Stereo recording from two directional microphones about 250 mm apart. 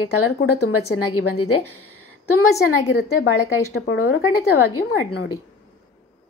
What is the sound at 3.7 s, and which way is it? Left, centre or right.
A woman's voice, left.